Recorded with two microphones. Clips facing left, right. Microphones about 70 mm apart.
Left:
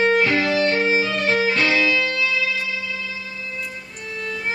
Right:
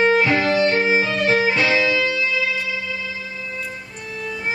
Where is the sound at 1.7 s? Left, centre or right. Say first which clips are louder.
Right 1 dB; right.